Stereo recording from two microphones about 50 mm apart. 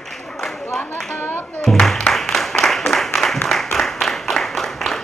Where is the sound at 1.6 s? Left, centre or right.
Centre.